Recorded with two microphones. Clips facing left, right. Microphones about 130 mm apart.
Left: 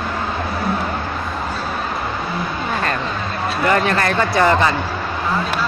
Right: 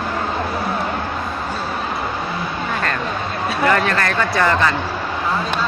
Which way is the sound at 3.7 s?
20° left (ahead or behind).